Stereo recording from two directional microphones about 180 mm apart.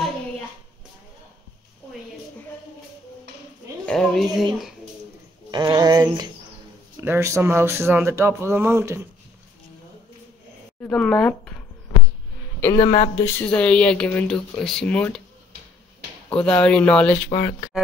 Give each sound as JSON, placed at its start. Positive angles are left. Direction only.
{"t": 3.8, "sound": "speech", "side_deg": 5}
{"t": 5.5, "sound": "a sound", "side_deg": -25}
{"t": 7.0, "sound": "speech", "side_deg": -15}
{"t": 10.8, "sound": "speech", "side_deg": 5}
{"t": 12.7, "sound": "speech", "side_deg": 30}
{"t": 13.2, "sound": "speech", "side_deg": 10}
{"t": 16.3, "sound": "speech", "side_deg": 5}
{"t": 17.3, "sound": "speech", "side_deg": 25}